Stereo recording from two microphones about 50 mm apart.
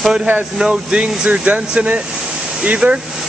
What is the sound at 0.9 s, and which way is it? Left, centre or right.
Speech, right.